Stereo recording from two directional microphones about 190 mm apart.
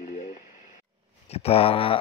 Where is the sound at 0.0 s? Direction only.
40° left (ahead or behind).